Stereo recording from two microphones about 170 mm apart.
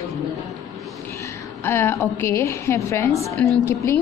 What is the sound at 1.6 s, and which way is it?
A woman's voice, 15° left (ahead or behind).